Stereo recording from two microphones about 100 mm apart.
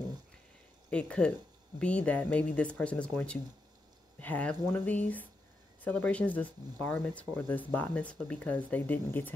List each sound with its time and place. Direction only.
0.8 s speech: 10° left (ahead or behind)
4.2 s speech: 15° left (ahead or behind)